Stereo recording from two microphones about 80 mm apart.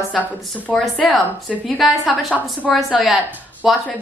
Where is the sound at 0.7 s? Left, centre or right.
Centre.